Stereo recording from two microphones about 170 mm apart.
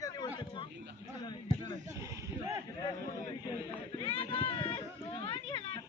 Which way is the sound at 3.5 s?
30° left (ahead or behind).